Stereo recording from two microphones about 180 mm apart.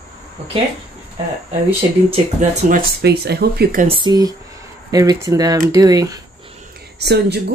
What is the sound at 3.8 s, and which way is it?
Speech, 25° right (ahead or behind).